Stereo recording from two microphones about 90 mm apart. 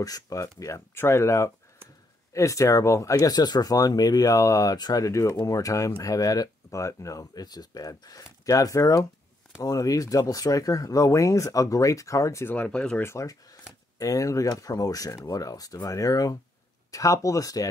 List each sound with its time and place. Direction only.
0.0 s speech: 40° left (ahead or behind)
12.5 s speech: 10° left (ahead or behind)
13.0 s speech: 35° left (ahead or behind)